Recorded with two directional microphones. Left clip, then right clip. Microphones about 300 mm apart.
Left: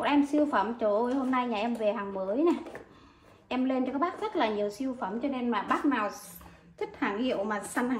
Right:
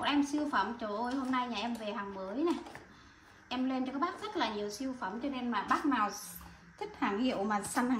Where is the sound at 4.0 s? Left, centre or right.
Centre.